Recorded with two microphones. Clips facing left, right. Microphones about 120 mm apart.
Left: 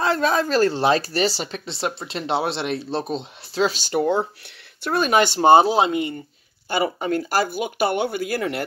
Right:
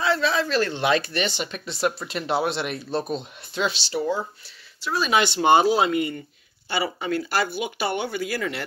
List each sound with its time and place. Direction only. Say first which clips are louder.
0.0 s speech: left 2 dB; 45° left (ahead or behind); by 6.1 s 25° left (ahead or behind)
6.7 s speech: left 4 dB; 45° left (ahead or behind)